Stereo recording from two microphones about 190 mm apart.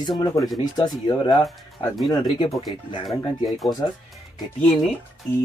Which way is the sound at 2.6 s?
20° left (ahead or behind).